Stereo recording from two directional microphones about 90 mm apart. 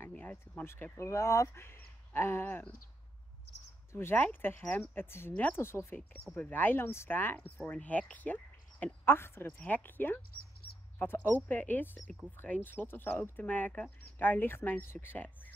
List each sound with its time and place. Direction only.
0.1 s speech: 15° left (ahead or behind)
0.9 s speech: 35° left (ahead or behind)
3.9 s speech: 25° left (ahead or behind)
5.6 s speech: 30° left (ahead or behind)